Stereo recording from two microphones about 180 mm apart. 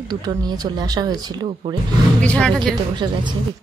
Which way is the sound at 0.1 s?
25° right (ahead or behind).